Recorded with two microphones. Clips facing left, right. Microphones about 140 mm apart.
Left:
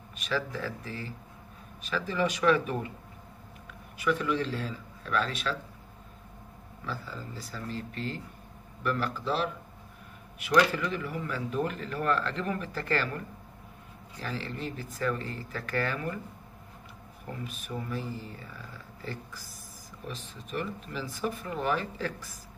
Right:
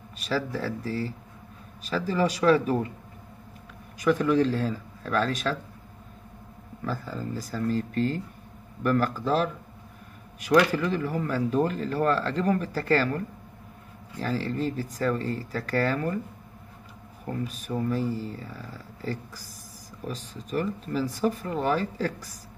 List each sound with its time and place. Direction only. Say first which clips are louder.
0.5 s speech: right 6 dB; 35° right (ahead or behind)
4.0 s speech: right 7 dB; 40° right (ahead or behind)
6.9 s speech: right 6 dB; 45° right (ahead or behind)
14.2 s speech: right 8 dB; 40° right (ahead or behind)
17.3 s speech: right 7 dB; 40° right (ahead or behind)